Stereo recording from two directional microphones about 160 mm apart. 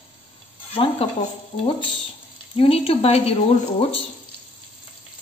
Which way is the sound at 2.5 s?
35° left (ahead or behind).